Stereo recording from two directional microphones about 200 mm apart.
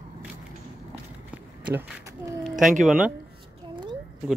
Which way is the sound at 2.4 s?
Centre (ahead or behind).